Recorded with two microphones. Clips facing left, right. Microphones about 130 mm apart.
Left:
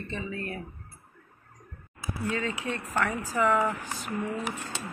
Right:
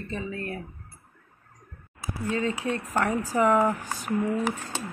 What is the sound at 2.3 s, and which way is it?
Speech, 30° right (ahead or behind).